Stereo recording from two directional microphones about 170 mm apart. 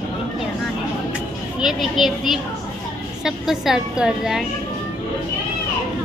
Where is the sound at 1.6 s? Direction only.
Centre (ahead or behind).